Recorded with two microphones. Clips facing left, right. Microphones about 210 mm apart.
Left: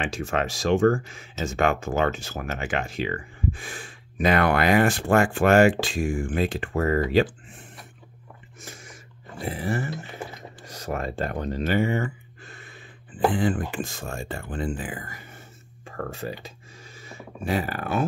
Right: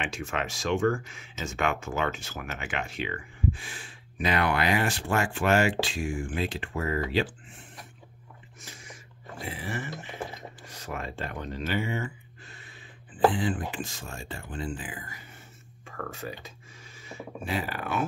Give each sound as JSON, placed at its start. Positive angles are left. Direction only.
{"t": 0.0, "sound": "speech", "side_deg": 35}
{"t": 9.4, "sound": "speech", "side_deg": 40}
{"t": 16.0, "sound": "speech", "side_deg": 30}
{"t": 17.5, "sound": "speech", "side_deg": 45}